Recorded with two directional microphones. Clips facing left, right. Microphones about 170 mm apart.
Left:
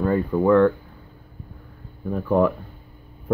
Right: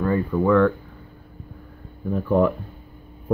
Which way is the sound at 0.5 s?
30° left (ahead or behind).